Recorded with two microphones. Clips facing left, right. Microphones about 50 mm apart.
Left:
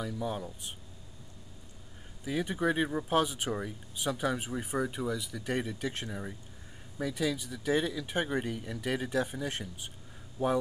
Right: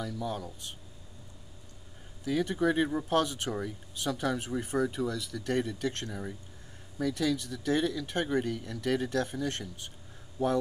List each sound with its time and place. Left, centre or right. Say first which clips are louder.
0.0 s speech: even; centre
2.2 s speech: right 2 dB; centre